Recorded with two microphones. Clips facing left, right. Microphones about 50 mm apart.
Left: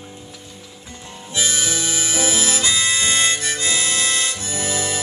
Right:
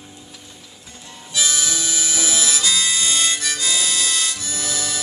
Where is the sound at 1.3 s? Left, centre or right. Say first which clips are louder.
Left 1 dB; left.